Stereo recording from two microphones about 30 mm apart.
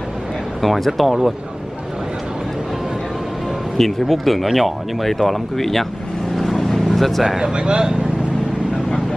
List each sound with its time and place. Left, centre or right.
0.6 s speech: centre
3.7 s speech: centre
6.3 s vehicle: centre
7.3 s speech: right